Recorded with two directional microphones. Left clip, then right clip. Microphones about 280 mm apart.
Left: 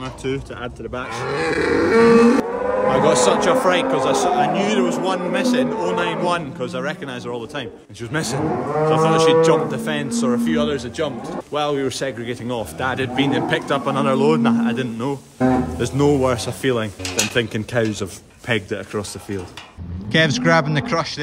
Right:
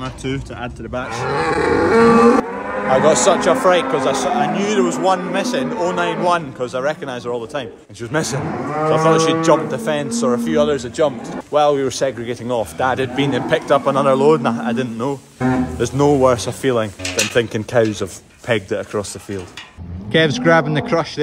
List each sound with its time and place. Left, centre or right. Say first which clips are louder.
0.0 s speech: even; centre
1.3 s livestock: right 2 dB; centre
2.4 s cattle: left 3 dB; left
2.9 s a man's voice: right 4 dB; centre
20.1 s a man's voice: right 3 dB; centre